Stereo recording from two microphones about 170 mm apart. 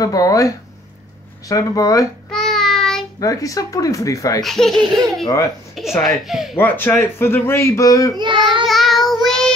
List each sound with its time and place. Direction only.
0.0 s speech: 20° left (ahead or behind)
2.3 s child singing: centre (ahead or behind)
3.2 s speech: 20° left (ahead or behind)
4.4 s speech: centre (ahead or behind)
4.8 s speech: 20° right (ahead or behind)
5.8 s speech: centre (ahead or behind)
6.5 s speech: 10° left (ahead or behind)
8.2 s child singing: 30° right (ahead or behind)
8.6 s child singing: centre (ahead or behind)